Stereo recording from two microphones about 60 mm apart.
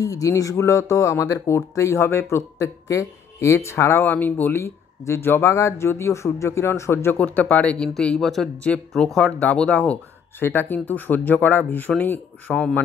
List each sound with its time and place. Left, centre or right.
0.0 s speech: left
1.5 s speech: left
4.6 s speech: left
7.2 s speech: left
8.2 s speech: centre
9.4 s speech: left
10.4 s speech: left